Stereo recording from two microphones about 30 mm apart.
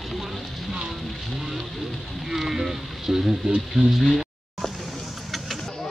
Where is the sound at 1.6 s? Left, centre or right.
Centre.